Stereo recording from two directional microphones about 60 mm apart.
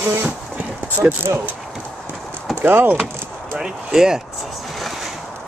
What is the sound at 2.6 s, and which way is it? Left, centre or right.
Speech, right.